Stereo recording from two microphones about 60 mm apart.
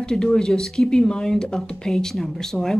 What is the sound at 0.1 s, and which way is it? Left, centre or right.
Speech, centre.